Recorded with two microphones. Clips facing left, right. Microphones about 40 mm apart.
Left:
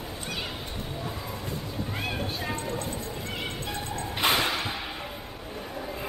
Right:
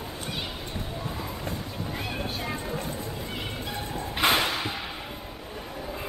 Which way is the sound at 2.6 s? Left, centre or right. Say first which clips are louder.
Even; centre.